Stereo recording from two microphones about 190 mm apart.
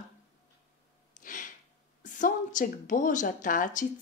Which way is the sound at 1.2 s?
45° left (ahead or behind).